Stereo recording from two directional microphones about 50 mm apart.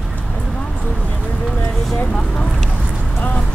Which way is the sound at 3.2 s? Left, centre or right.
Left.